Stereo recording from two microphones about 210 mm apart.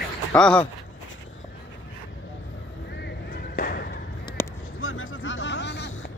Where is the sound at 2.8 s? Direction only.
50° left (ahead or behind).